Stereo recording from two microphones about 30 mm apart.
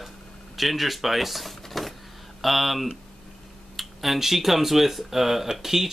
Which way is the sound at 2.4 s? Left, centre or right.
Centre.